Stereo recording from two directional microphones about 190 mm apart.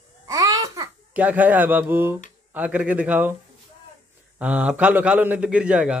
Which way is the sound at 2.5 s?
10° right (ahead or behind).